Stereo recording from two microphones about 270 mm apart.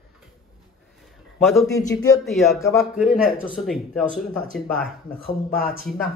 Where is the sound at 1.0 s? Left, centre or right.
Centre.